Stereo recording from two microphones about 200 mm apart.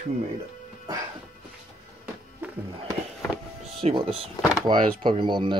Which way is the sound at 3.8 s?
30° right (ahead or behind).